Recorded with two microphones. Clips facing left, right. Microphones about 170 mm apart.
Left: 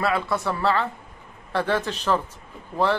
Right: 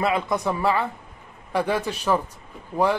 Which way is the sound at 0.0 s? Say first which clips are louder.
Right 1 dB; 20° right (ahead or behind).